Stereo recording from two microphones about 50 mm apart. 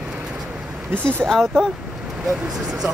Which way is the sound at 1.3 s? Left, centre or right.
Centre.